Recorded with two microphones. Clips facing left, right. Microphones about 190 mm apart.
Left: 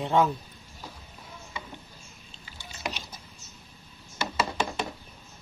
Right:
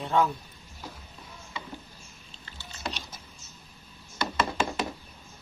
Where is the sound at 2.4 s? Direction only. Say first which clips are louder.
Left 1 dB; 15° left (ahead or behind).